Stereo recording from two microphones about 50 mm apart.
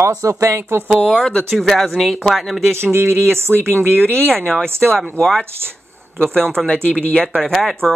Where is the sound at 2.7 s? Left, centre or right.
Right.